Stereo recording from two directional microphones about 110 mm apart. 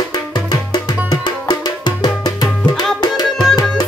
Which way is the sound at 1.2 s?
40° left (ahead or behind).